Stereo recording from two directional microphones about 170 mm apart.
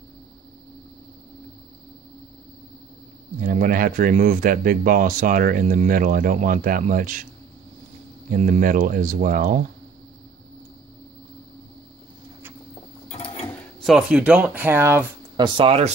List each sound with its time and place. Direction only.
3.3 s speech: 55° right (ahead or behind)
8.3 s speech: 50° right (ahead or behind)
13.1 s sewing machine: 40° left (ahead or behind)
13.8 s speech: 5° right (ahead or behind)
15.3 s speech: 30° right (ahead or behind)